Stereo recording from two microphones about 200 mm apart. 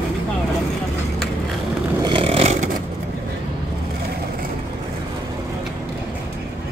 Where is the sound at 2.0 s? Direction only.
25° right (ahead or behind).